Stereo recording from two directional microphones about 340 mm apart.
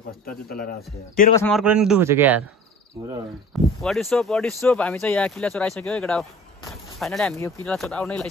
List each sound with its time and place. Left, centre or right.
0.3 s a man's voice: left
1.3 s speech: centre
3.8 s speech: centre